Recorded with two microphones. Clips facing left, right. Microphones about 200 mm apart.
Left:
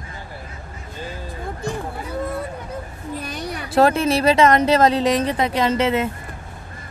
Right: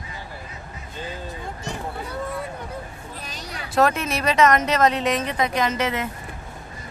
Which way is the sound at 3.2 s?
60° left (ahead or behind).